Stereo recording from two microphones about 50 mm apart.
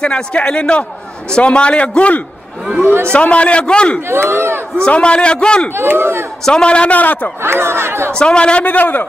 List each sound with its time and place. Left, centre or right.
0.0 s a man's voice: left
2.8 s speech: right
3.1 s a man's voice: left
4.1 s battle cry: right
4.8 s a man's voice: left
5.8 s speech: right
6.4 s a man's voice: centre; by 7.2 s left
7.4 s battle cry: right
8.1 s a man's voice: centre
8.6 s a man's voice: left